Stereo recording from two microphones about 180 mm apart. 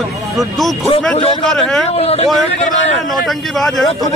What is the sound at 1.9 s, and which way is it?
Speech, 35° left (ahead or behind).